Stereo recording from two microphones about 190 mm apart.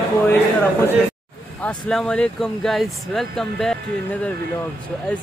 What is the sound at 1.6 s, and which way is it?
Speech, 5° left (ahead or behind).